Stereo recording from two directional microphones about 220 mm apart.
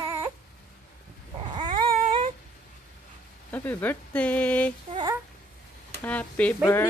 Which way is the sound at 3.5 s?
10° left (ahead or behind).